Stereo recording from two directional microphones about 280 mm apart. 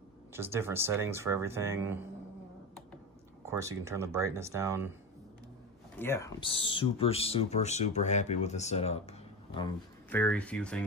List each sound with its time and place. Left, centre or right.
0.3 s speech: centre
3.4 s speech: centre
5.9 s speech: centre
10.0 s speech: centre